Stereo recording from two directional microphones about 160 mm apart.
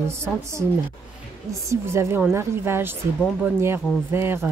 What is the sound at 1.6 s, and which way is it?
Speech, 15° right (ahead or behind).